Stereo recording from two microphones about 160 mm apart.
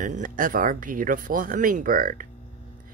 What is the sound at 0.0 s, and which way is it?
Speech, 55° right (ahead or behind).